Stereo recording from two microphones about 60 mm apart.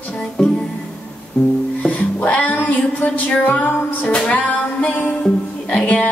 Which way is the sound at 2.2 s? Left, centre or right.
Left.